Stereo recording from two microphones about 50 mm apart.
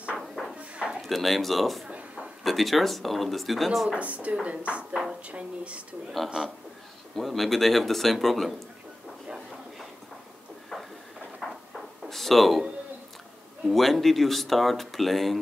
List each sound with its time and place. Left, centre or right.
0.6 s dishes: right
1.0 s speech: centre
1.9 s a sound: right
2.4 s speech: centre
3.9 s a woman's voice: right
6.4 s a man's voice: centre
7.2 s speech: centre
10.7 s a sound: centre
13.7 s speech: centre